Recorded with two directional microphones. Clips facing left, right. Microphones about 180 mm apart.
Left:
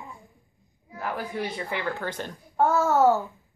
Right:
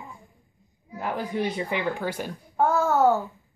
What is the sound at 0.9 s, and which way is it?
Speech, 20° right (ahead or behind).